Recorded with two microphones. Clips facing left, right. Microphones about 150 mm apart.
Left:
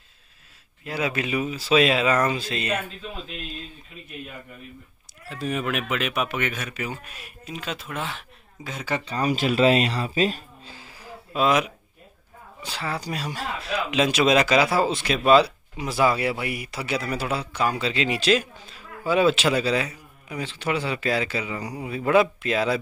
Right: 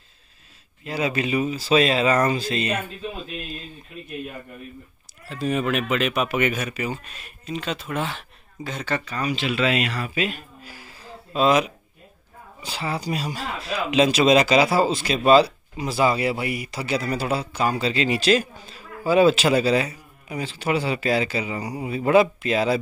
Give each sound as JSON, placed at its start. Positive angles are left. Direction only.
{"t": 0.8, "sound": "speech", "side_deg": 0}
{"t": 5.3, "sound": "speech", "side_deg": 0}
{"t": 9.0, "sound": "a man's voice", "side_deg": 35}
{"t": 10.7, "sound": "a sound", "side_deg": 20}
{"t": 12.6, "sound": "a man's voice", "side_deg": -10}
{"t": 19.8, "sound": "a sound", "side_deg": -5}
{"t": 20.5, "sound": "a man's voice", "side_deg": -5}